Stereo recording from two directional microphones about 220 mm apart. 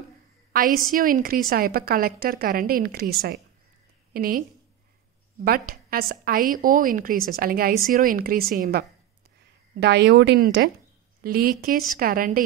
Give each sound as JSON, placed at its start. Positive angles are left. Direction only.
{"t": 0.5, "sound": "a woman's voice", "side_deg": -40}